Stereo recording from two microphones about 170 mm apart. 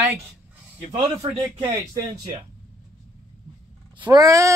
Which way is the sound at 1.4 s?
15° right (ahead or behind).